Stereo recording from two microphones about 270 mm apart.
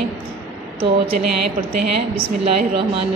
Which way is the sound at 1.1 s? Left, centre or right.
Right.